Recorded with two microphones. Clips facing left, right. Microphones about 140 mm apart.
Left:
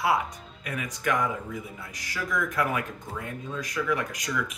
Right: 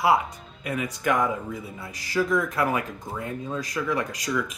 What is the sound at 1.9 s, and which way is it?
Speech, 30° right (ahead or behind).